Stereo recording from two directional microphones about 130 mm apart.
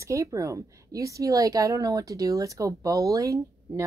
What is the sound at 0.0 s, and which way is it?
A woman's voice, 25° right (ahead or behind).